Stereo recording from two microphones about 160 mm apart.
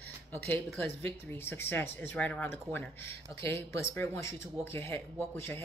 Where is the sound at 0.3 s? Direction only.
10° left (ahead or behind).